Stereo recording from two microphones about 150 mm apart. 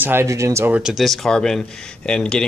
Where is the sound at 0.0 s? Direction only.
15° right (ahead or behind).